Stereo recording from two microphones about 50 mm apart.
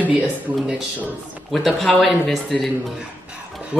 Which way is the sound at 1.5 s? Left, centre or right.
Centre.